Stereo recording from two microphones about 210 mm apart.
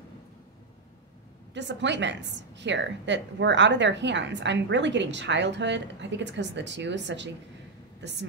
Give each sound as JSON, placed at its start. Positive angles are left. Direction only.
{"t": 1.5, "sound": "a woman's voice", "side_deg": -55}